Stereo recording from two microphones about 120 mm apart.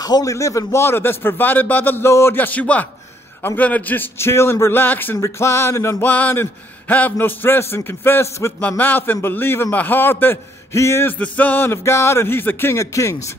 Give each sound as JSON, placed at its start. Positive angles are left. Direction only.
{"t": 0.0, "sound": "a man's voice", "side_deg": 30}